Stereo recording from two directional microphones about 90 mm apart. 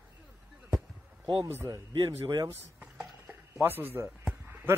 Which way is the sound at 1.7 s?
55° right (ahead or behind).